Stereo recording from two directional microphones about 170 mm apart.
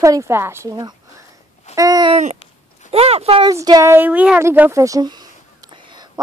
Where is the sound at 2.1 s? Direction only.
40° right (ahead or behind).